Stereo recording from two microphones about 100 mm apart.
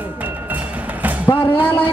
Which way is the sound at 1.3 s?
60° left (ahead or behind).